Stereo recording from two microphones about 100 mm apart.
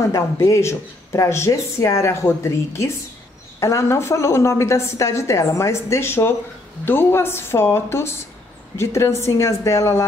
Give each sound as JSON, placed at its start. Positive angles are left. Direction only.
{"t": 0.0, "sound": "speech", "side_deg": 30}